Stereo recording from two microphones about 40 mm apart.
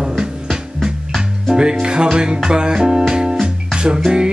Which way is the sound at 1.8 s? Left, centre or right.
Right.